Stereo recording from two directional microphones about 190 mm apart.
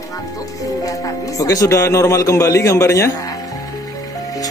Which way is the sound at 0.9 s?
15° left (ahead or behind).